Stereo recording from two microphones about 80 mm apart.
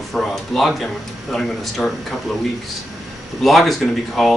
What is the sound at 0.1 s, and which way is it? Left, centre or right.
Speech, centre.